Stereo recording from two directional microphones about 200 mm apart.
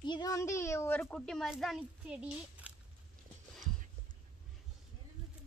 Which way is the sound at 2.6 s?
5° right (ahead or behind).